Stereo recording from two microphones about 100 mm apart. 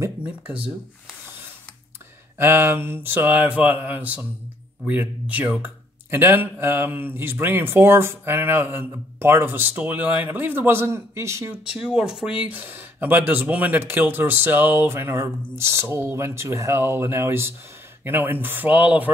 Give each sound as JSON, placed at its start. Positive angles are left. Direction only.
{"t": 0.2, "sound": "speech", "side_deg": -15}
{"t": 2.3, "sound": "speech", "side_deg": -25}
{"t": 11.5, "sound": "speech", "side_deg": -5}